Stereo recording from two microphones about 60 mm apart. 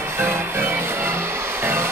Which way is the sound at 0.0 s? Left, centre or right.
Right.